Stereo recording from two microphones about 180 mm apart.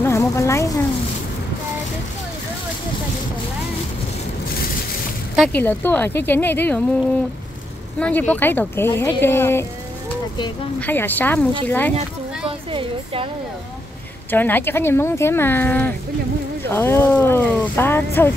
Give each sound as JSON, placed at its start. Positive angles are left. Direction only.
{"t": 0.0, "sound": "a sound", "side_deg": 15}
{"t": 5.5, "sound": "speech", "side_deg": 10}
{"t": 8.0, "sound": "speech", "side_deg": 10}
{"t": 10.8, "sound": "speech", "side_deg": 10}
{"t": 12.4, "sound": "a woman's voice", "side_deg": -30}
{"t": 14.3, "sound": "speech", "side_deg": 10}